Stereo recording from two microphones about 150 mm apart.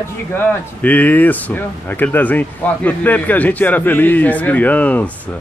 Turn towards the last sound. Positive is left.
turn(degrees=10)  # may be behind; listen again after turning